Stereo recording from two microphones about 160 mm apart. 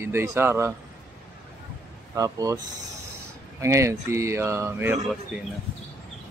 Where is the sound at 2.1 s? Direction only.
20° right (ahead or behind).